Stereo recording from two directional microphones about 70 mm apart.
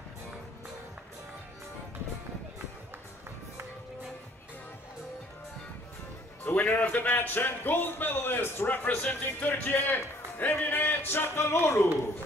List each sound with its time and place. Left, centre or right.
6.4 s a man's voice: left